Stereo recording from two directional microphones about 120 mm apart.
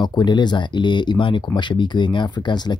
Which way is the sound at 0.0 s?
40° left (ahead or behind).